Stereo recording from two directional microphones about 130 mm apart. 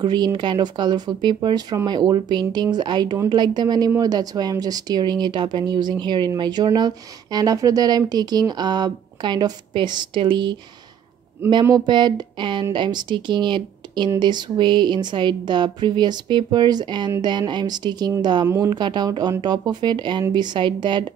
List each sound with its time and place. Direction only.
0.0 s speech: 35° right (ahead or behind)
11.8 s speech: 35° right (ahead or behind)